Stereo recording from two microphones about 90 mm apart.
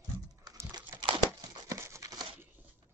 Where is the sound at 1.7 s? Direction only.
35° right (ahead or behind).